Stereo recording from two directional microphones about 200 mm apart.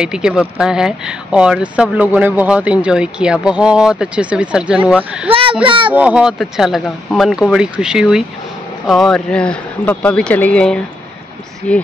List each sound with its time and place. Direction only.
0.0 s speech: 5° right (ahead or behind)
5.3 s a sound: 25° right (ahead or behind)
5.7 s a child's voice: 25° right (ahead or behind)
5.9 s speech: 5° right (ahead or behind)